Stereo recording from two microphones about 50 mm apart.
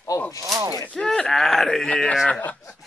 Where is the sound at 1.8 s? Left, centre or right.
Left.